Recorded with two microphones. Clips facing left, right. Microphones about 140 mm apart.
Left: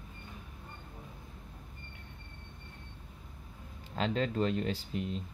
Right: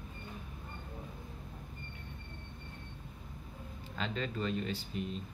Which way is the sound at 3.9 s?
80° left.